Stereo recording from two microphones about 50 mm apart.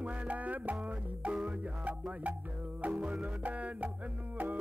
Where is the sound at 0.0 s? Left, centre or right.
Right.